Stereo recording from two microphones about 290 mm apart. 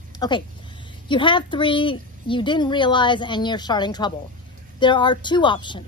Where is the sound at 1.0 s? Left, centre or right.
Centre.